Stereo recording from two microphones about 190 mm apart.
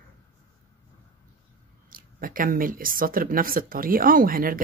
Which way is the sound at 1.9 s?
45° right (ahead or behind).